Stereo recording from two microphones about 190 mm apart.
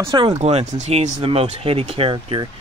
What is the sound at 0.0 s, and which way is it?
Speech, 25° right (ahead or behind).